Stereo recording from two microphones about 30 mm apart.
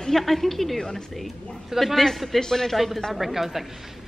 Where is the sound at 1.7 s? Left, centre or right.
Centre.